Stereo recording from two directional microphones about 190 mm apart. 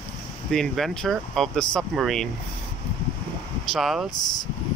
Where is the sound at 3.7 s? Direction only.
Centre (ahead or behind).